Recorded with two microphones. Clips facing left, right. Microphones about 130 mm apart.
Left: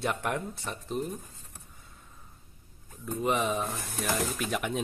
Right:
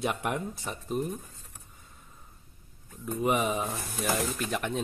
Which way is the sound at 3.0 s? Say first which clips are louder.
Right 1 dB; 5° right (ahead or behind).